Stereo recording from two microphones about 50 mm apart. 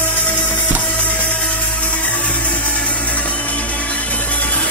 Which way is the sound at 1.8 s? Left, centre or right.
Left.